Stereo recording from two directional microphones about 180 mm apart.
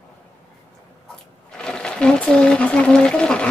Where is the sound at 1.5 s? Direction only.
5° left (ahead or behind).